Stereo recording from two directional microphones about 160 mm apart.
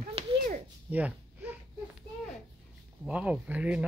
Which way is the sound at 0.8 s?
10° right (ahead or behind).